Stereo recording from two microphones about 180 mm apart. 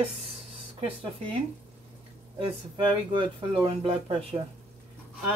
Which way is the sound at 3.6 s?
35° right (ahead or behind).